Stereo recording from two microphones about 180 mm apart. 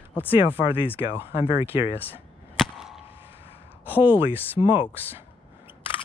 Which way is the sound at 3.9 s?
10° right (ahead or behind).